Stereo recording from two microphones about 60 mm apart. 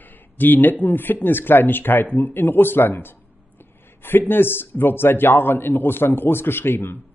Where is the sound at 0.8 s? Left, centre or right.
Left.